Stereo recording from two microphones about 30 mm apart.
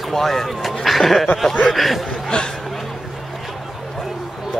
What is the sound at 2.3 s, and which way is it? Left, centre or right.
Speech, left.